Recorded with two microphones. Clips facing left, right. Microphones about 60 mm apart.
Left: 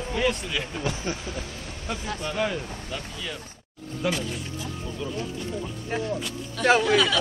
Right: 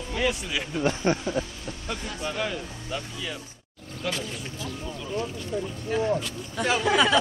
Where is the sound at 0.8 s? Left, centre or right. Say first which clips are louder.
Right 5 dB; right.